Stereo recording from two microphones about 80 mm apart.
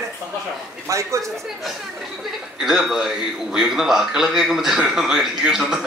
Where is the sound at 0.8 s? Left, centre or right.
Right.